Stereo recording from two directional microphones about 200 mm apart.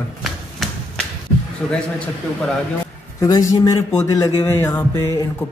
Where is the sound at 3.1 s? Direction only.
15° left (ahead or behind).